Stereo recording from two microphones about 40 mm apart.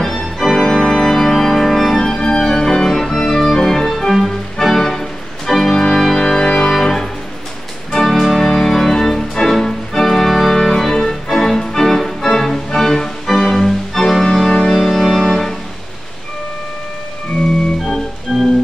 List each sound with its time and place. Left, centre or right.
0.0 s organ: centre
11.2 s music: centre
18.3 s organ: centre